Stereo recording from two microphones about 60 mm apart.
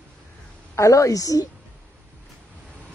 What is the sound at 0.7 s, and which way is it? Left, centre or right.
Speech, left.